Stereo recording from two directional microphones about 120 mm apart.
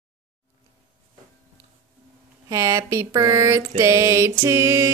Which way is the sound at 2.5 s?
25° right (ahead or behind).